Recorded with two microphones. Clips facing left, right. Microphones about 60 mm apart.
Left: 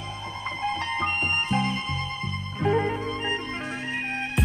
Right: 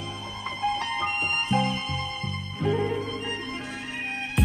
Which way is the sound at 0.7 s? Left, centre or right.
Left.